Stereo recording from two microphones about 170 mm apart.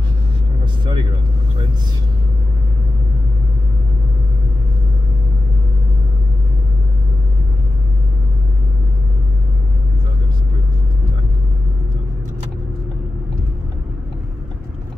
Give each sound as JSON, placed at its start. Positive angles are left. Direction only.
{"t": 0.8, "sound": "vehicle", "side_deg": -25}